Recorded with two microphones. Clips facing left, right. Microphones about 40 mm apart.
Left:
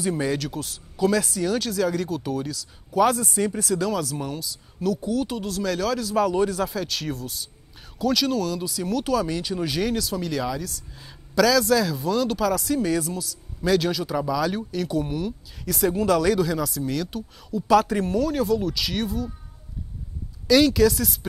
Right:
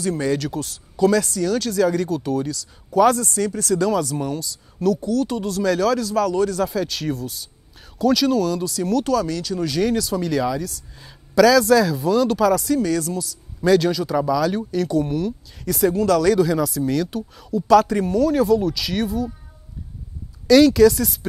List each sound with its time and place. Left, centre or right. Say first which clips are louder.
0.0 s speech: right 3 dB; centre
3.3 s speech: right 2 dB; centre
3.6 s speech: right 5 dB; centre
6.1 s speech: right 2 dB; centre
6.6 s speech: right 4 dB; centre
15.9 s speech: right 3 dB; centre
20.4 s speech: right 5 dB; centre